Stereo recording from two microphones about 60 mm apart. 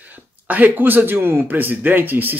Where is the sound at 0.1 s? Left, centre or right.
Right.